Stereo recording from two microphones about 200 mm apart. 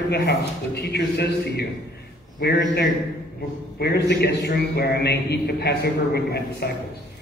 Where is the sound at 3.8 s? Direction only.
55° left (ahead or behind).